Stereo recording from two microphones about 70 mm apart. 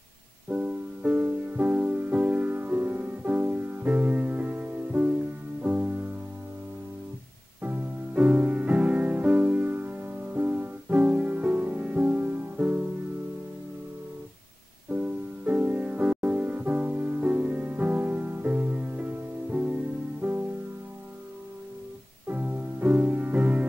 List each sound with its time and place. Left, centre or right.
0.5 s music: right
7.6 s music: right
14.9 s music: right
22.3 s music: right